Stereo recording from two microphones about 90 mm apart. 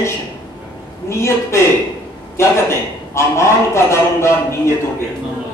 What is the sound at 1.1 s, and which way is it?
A man's voice, 30° left (ahead or behind).